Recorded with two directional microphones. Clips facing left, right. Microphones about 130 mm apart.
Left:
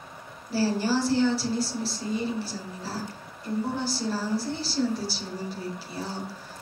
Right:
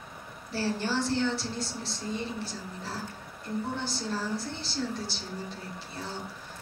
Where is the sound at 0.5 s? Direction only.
5° left (ahead or behind).